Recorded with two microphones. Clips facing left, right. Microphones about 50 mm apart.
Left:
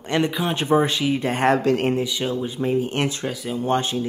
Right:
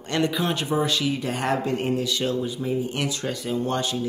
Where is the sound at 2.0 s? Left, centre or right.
Centre.